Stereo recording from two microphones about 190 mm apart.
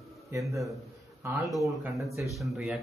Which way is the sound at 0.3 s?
15° right (ahead or behind).